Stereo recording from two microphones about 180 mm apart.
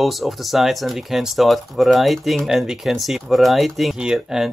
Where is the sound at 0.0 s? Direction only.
Centre (ahead or behind).